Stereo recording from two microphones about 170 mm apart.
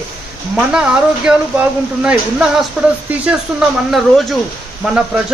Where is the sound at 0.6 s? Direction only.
5° right (ahead or behind).